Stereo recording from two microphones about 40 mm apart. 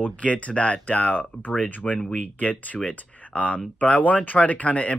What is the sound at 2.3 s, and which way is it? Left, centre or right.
Speech, left.